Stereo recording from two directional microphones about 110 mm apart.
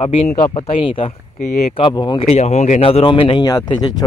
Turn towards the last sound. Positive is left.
turn(degrees=40)  # may be behind; listen again after turning